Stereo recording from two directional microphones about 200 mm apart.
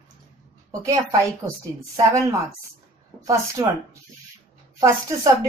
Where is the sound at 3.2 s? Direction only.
15° right (ahead or behind).